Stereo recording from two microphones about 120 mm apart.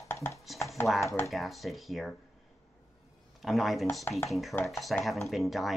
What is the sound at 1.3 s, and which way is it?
Speech, centre (ahead or behind).